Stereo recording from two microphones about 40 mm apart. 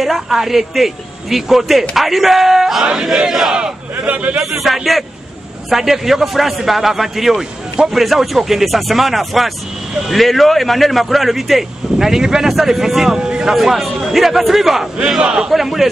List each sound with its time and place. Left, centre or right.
0.0 s a man's voice: centre
4.0 s a man's voice: right
4.5 s a man's voice: centre
15.0 s a man's voice: centre
15.5 s a man's voice: centre